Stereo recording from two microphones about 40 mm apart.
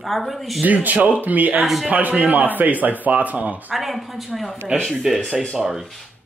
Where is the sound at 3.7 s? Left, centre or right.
Centre.